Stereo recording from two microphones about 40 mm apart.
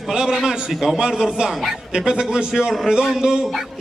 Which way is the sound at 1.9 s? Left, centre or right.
Centre.